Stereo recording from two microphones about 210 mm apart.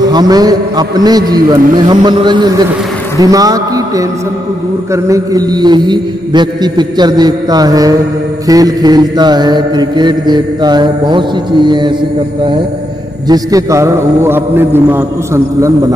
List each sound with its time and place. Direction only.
0.0 s mantra: 20° right (ahead or behind)
3.2 s a man's voice: 15° right (ahead or behind)
4.9 s mantra: 15° right (ahead or behind)
13.3 s a man's voice: 15° right (ahead or behind)